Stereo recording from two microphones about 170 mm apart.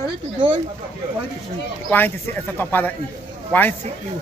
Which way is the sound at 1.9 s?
10° left (ahead or behind).